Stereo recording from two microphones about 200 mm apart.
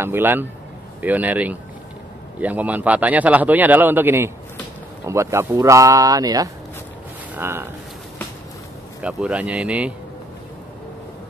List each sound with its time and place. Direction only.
0.0 s a man's voice: 10° right (ahead or behind)
9.0 s speech: 5° right (ahead or behind)